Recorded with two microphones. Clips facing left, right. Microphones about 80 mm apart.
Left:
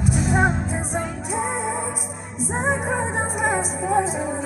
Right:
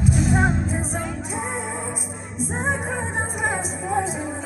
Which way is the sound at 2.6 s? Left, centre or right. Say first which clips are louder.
Left 4 dB; centre.